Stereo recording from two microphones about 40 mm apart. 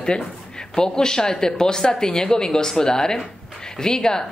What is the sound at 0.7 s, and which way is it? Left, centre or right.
Speech, centre.